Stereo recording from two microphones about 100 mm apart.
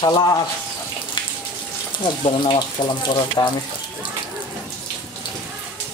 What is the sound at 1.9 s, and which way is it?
Speech, 55° left (ahead or behind).